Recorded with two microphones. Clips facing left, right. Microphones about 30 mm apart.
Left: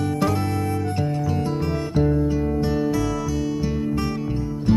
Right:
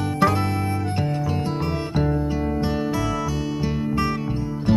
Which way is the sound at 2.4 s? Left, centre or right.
Right.